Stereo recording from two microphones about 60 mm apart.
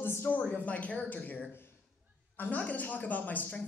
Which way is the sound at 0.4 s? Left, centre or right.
Left.